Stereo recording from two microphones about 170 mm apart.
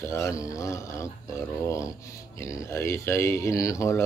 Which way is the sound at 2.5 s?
15° left (ahead or behind).